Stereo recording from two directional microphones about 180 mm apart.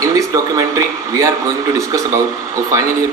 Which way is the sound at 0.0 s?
20° right (ahead or behind).